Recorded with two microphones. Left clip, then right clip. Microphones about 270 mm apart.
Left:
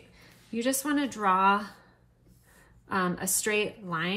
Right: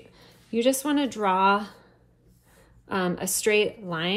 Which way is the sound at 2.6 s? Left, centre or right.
Centre.